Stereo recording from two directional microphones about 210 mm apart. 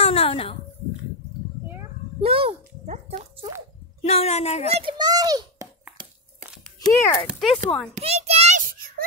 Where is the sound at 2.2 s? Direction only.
25° right (ahead or behind).